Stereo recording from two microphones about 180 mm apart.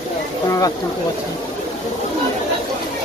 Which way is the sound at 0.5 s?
20° left (ahead or behind).